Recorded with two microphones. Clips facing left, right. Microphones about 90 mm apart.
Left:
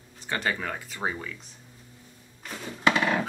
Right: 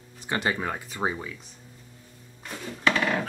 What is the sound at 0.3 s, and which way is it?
Speech, 20° right (ahead or behind).